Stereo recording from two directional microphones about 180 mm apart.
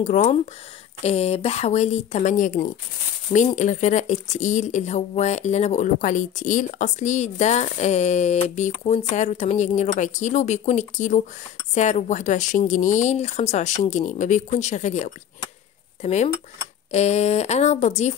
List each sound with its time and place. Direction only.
0.0 s speech: 40° left (ahead or behind)